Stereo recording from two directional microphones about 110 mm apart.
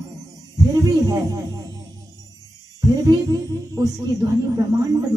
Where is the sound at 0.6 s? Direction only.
35° right (ahead or behind).